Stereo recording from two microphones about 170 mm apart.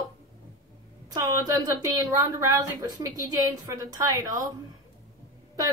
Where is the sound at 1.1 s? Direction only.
20° right (ahead or behind).